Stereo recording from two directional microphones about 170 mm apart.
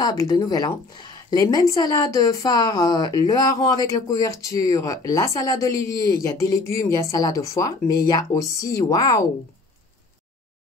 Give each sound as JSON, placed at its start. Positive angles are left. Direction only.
{"t": 0.0, "sound": "a woman's voice", "side_deg": 20}